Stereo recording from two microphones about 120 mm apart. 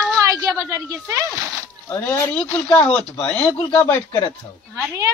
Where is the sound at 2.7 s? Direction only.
10° left (ahead or behind).